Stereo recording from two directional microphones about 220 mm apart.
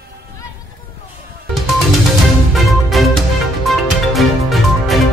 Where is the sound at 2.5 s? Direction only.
Centre (ahead or behind).